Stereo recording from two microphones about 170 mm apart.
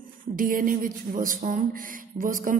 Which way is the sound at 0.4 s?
55° right (ahead or behind).